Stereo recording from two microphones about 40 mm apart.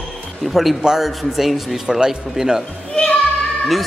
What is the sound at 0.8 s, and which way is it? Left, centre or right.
Speech, centre.